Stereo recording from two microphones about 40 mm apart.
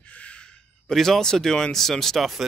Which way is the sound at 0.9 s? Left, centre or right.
Centre.